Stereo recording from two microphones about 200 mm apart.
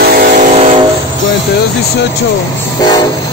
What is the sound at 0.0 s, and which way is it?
Vehicle, 45° right (ahead or behind).